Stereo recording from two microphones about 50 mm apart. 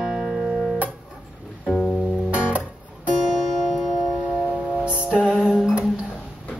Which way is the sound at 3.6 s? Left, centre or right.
Centre.